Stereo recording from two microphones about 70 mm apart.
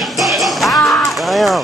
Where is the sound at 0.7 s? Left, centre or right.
Left.